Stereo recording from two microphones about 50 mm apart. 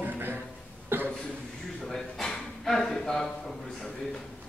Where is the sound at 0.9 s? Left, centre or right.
Right.